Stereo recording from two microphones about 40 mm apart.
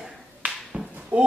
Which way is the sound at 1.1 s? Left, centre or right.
Right.